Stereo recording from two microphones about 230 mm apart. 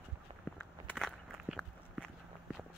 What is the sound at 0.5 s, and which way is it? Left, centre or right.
Walk, centre.